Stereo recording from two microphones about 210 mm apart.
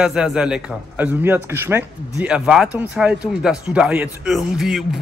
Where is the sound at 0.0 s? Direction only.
5° right (ahead or behind).